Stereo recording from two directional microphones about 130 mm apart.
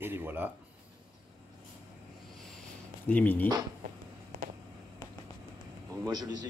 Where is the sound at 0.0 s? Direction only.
15° right (ahead or behind).